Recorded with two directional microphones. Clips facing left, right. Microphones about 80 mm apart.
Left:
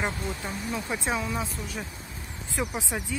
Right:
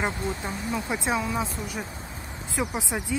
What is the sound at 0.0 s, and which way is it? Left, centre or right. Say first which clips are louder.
Speech: right 2 dB; right.